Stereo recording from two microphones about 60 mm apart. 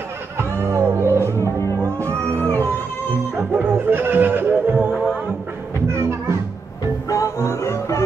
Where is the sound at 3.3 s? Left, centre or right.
Right.